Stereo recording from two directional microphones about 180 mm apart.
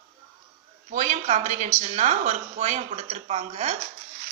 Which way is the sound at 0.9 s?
45° right (ahead or behind).